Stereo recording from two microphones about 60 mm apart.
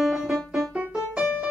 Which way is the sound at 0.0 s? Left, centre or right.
Centre.